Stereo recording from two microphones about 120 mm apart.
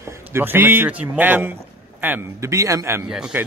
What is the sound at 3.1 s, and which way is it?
Speech, 5° right (ahead or behind).